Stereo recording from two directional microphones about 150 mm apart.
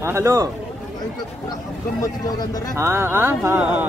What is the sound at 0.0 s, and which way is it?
Speech, 15° right (ahead or behind).